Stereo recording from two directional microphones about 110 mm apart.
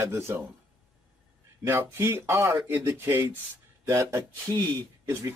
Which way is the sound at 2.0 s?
20° right (ahead or behind).